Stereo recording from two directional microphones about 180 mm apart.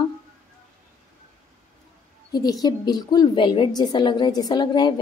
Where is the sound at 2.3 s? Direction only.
20° left (ahead or behind).